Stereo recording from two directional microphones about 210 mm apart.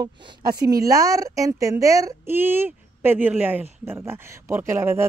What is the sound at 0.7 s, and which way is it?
Speech, 15° right (ahead or behind).